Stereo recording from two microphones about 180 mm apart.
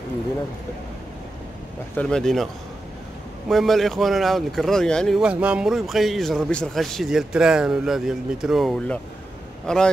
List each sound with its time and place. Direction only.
2.0 s speech: 5° left (ahead or behind)